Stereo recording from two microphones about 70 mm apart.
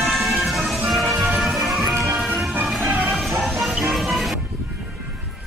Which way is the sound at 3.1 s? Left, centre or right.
Centre.